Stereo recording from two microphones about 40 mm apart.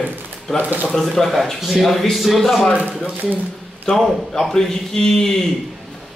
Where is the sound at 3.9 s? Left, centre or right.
Left.